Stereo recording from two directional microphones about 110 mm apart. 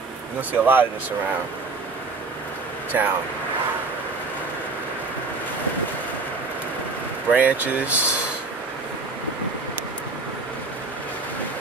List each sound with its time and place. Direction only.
0.5 s speech: 15° right (ahead or behind)
2.9 s speech: 20° right (ahead or behind)
7.2 s speech: 15° right (ahead or behind)